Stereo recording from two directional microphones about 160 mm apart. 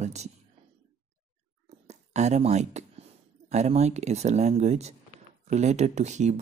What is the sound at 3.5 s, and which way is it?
Speech, 45° right (ahead or behind).